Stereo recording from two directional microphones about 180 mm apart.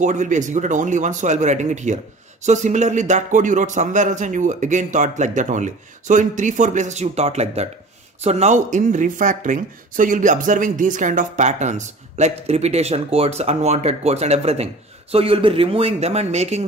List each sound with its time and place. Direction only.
0.0 s a man's voice: 45° right (ahead or behind)